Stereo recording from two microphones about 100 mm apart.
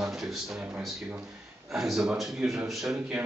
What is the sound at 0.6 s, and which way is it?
Speech, 15° right (ahead or behind).